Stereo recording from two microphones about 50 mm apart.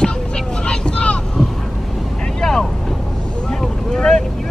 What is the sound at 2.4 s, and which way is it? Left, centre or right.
Vehicle, centre.